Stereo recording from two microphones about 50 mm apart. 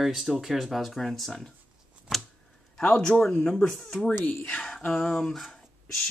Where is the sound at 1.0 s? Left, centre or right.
Centre.